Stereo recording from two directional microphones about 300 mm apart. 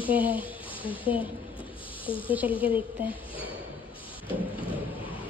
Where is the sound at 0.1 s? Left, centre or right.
Centre.